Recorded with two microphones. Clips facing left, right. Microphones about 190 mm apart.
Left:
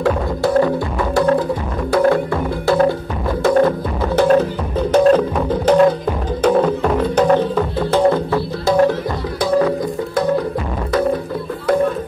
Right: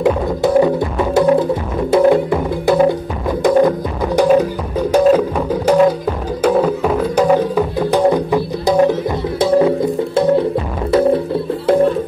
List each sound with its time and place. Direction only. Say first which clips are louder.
0.0 s music: right 3 dB; 20° right (ahead or behind)